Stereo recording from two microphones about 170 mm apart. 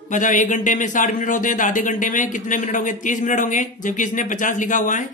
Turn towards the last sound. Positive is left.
turn(degrees=50)  # may be behind; listen again after turning